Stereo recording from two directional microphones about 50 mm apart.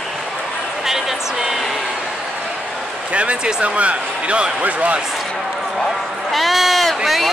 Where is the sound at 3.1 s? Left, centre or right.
Right.